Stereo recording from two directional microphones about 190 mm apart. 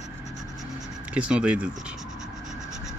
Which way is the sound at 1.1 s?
5° right (ahead or behind).